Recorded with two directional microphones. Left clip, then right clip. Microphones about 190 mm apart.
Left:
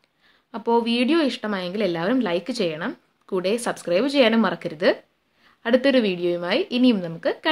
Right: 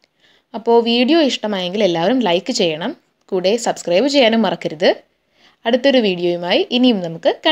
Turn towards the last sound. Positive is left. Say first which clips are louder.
# right 8 dB
turn(degrees=-15)  # may be behind; listen again after turning